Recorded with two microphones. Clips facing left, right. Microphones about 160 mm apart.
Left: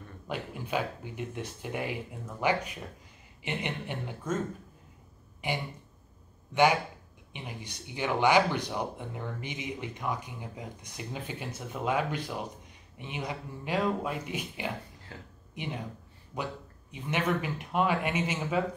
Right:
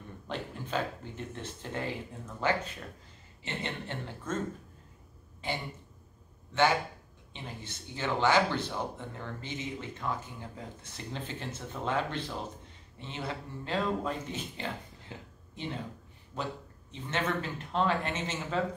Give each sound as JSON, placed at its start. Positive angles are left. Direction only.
{"t": 0.3, "sound": "speech", "side_deg": 10}
{"t": 5.4, "sound": "speech", "side_deg": 15}
{"t": 15.1, "sound": "speech", "side_deg": -20}
{"t": 15.5, "sound": "speech", "side_deg": 15}